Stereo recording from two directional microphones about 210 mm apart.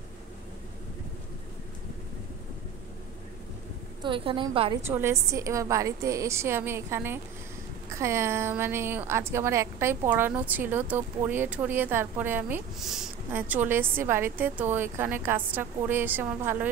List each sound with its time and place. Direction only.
4.0 s a woman's voice: 25° right (ahead or behind)
4.8 s a woman's voice: 10° right (ahead or behind)